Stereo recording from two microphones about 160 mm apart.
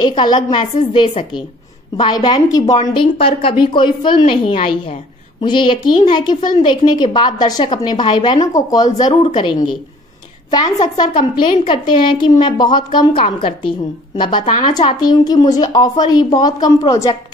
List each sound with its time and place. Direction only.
0.2 s a woman's voice: 30° left (ahead or behind)